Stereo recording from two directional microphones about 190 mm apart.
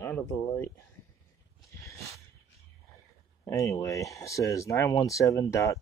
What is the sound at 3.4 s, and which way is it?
Speech, 15° left (ahead or behind).